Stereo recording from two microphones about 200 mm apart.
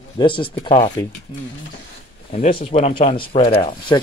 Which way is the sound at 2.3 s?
35° left (ahead or behind).